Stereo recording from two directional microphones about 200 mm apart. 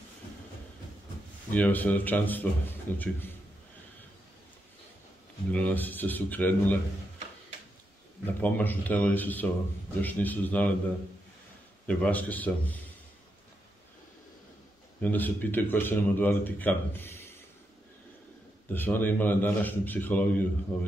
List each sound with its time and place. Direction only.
1.5 s speech: 10° left (ahead or behind)
5.5 s speech: 10° left (ahead or behind)
8.4 s speech: 10° left (ahead or behind)
11.9 s speech: 5° left (ahead or behind)
15.0 s speech: 10° left (ahead or behind)
18.7 s speech: 10° left (ahead or behind)